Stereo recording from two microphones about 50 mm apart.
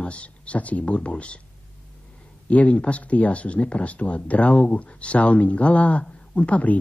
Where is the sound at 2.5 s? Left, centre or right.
Left.